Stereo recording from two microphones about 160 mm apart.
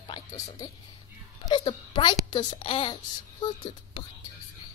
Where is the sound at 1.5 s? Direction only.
30° left (ahead or behind).